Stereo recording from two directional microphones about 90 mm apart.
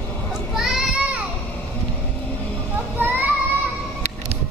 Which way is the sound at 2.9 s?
20° right (ahead or behind).